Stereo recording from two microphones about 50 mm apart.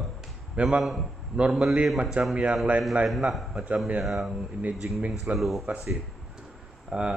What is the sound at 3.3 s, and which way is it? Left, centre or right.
Speech, centre.